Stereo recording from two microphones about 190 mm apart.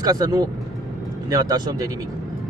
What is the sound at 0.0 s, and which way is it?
Speech, 20° right (ahead or behind).